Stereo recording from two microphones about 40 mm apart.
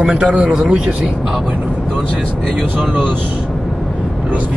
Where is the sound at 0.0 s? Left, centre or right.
Right.